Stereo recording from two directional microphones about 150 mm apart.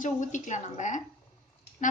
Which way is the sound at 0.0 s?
55° left (ahead or behind).